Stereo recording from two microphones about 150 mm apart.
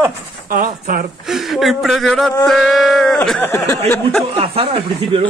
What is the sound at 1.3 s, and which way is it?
Speech, centre (ahead or behind).